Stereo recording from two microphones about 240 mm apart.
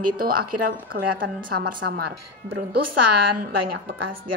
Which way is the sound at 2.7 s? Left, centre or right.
Right.